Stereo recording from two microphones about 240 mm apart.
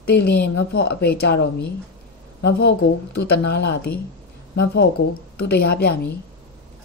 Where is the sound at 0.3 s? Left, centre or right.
Left.